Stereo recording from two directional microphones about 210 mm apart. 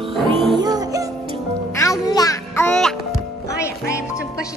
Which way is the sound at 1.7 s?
15° left (ahead or behind).